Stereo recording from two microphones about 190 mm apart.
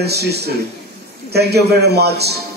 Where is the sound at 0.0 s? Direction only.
60° right (ahead or behind).